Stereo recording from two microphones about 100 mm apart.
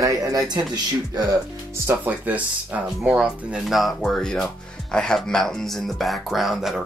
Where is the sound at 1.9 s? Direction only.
15° right (ahead or behind).